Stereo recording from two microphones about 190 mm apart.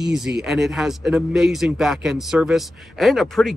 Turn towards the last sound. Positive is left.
turn(degrees=0)  # may be behind; listen again after turning